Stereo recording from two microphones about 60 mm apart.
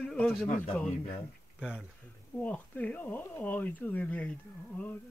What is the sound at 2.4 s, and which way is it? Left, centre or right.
Speech, left.